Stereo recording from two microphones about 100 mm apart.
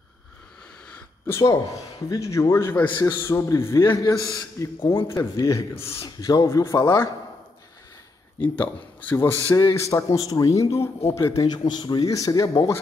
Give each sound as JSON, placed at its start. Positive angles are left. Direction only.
{"t": 0.8, "sound": "a sound", "side_deg": 15}
{"t": 1.3, "sound": "a man's voice", "side_deg": 35}
{"t": 8.4, "sound": "a man's voice", "side_deg": 20}
{"t": 9.6, "sound": "a man's voice", "side_deg": 35}
{"t": 11.4, "sound": "a man's voice", "side_deg": 45}
{"t": 12.1, "sound": "a man's voice", "side_deg": 35}